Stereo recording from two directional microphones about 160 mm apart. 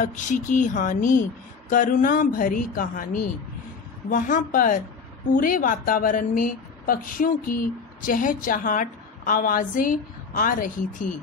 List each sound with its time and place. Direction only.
0.0 s a woman's voice: 50° left (ahead or behind)
4.1 s a woman's voice: 55° left (ahead or behind)